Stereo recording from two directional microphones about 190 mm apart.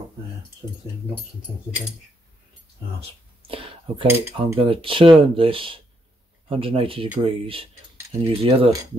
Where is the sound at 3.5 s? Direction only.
30° right (ahead or behind).